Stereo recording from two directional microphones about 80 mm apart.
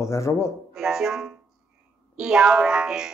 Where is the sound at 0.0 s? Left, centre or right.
Left.